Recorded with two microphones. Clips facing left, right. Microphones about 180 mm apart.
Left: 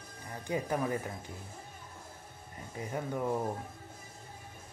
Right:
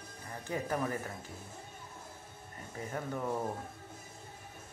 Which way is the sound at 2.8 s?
15° left (ahead or behind).